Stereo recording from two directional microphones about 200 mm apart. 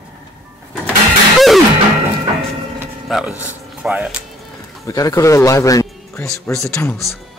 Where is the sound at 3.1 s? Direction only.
5° right (ahead or behind).